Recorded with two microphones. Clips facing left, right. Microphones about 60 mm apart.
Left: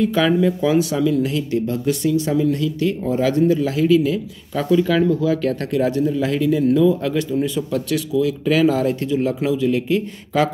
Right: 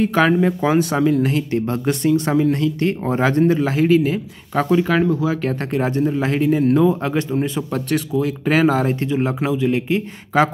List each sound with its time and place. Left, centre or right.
0.0 s speech: right
5.2 s speech: right